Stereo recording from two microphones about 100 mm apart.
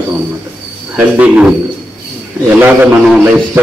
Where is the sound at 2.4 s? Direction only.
20° right (ahead or behind).